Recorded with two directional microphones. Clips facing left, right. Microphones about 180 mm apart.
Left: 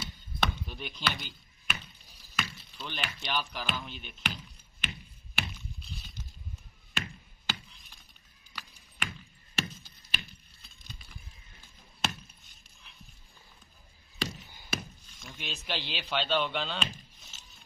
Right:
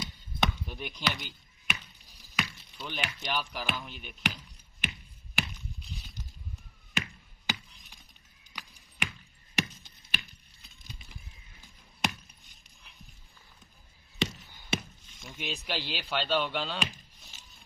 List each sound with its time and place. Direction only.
0.0 s chop: 15° right (ahead or behind)
2.3 s chop: 15° right (ahead or behind)
3.0 s speech: 10° right (ahead or behind)
6.9 s chop: 15° right (ahead or behind)
9.6 s a sound: 15° right (ahead or behind)
12.0 s chop: 15° right (ahead or behind)
14.1 s chop: 25° right (ahead or behind)
15.2 s speech: 10° right (ahead or behind)